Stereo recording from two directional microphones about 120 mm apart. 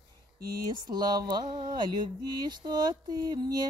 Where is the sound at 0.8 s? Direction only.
35° right (ahead or behind).